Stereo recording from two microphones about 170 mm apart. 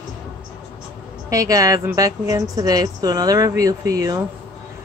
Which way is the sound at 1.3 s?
20° right (ahead or behind).